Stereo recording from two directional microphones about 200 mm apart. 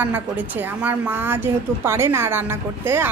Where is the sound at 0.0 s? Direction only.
10° right (ahead or behind).